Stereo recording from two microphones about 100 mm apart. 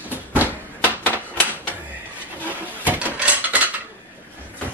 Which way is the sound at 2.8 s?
15° right (ahead or behind).